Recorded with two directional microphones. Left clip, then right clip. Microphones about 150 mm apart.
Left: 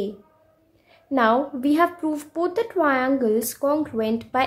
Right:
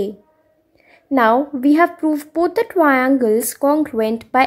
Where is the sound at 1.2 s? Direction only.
35° right (ahead or behind).